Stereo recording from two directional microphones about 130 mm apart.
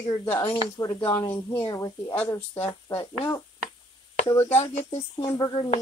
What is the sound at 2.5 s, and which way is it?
Speech, 45° left (ahead or behind).